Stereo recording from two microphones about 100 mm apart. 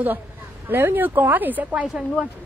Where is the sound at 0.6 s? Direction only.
20° right (ahead or behind).